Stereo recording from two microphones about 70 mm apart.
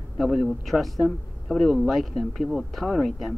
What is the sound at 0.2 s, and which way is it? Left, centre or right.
Speech, centre.